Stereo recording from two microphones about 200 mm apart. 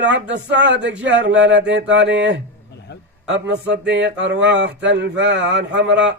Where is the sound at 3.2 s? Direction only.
65° right (ahead or behind).